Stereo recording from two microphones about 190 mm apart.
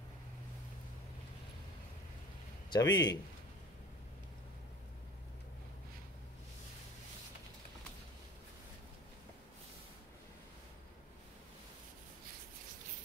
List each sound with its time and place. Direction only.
2.7 s a man's voice: 20° left (ahead or behind)